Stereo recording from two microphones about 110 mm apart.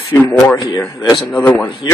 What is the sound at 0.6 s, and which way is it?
Speech, 40° left (ahead or behind).